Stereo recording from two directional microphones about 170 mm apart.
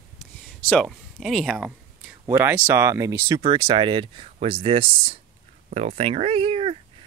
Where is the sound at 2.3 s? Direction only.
15° right (ahead or behind).